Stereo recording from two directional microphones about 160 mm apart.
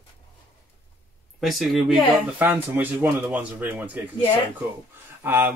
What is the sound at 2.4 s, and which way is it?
Speech, 10° right (ahead or behind).